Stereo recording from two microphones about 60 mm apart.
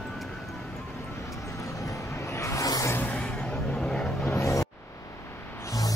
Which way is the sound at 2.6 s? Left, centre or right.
Left.